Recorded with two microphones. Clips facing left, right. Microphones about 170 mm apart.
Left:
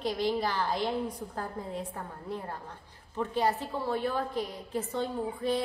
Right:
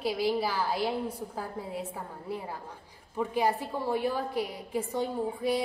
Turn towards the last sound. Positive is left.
turn(degrees=-10)  # may be behind; listen again after turning